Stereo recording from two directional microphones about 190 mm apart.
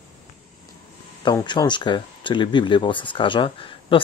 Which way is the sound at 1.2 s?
25° left (ahead or behind).